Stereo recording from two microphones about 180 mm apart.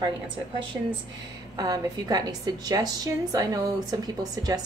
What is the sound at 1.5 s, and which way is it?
A woman's voice, 20° right (ahead or behind).